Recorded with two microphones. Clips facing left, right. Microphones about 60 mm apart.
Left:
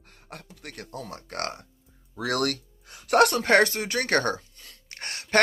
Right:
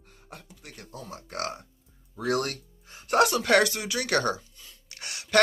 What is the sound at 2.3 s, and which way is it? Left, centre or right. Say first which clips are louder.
Speech: left 1 dB; left.